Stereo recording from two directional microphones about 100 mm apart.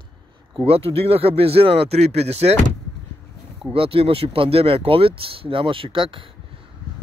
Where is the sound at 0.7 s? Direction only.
75° right (ahead or behind); by 2.6 s 90° right.